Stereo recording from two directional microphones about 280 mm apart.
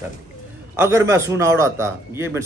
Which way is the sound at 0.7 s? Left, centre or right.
Centre.